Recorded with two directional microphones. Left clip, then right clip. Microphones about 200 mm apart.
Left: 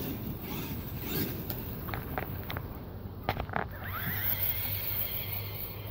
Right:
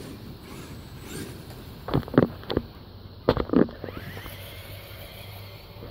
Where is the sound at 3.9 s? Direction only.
30° left (ahead or behind).